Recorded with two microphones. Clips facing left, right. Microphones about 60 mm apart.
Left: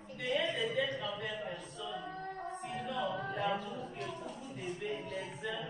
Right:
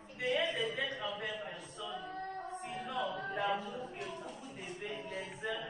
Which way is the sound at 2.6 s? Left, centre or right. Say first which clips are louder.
Left 2 dB; right.